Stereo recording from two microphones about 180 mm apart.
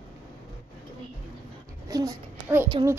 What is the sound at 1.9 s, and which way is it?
Speech, 20° right (ahead or behind).